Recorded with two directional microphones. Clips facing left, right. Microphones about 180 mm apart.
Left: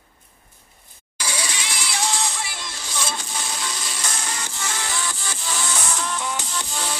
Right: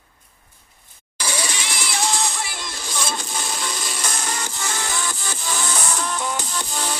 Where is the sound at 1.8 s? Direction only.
45° right (ahead or behind).